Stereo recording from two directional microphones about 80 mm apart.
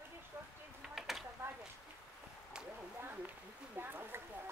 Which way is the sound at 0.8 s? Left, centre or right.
Centre.